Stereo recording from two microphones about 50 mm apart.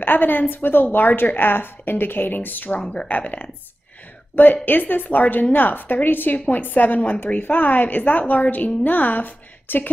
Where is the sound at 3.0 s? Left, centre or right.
Left.